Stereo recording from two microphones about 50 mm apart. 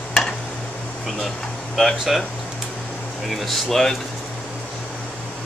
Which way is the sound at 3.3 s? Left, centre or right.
Centre.